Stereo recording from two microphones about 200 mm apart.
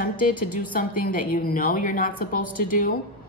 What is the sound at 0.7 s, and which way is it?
A woman's voice, 45° left (ahead or behind).